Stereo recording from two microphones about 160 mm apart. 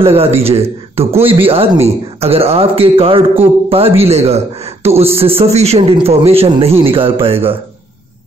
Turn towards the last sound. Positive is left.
turn(degrees=-35)  # may be behind; listen again after turning